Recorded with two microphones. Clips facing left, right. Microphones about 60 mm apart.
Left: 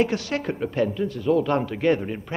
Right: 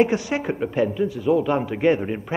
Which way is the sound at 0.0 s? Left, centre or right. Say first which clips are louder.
Right 3 dB; centre.